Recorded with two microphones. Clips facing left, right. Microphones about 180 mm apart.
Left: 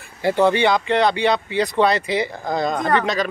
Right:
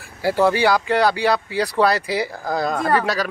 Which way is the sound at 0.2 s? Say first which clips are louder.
Left 1 dB; 5° right (ahead or behind).